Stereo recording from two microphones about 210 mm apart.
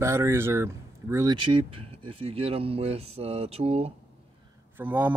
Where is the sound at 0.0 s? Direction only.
15° right (ahead or behind); by 3.9 s 30° right (ahead or behind).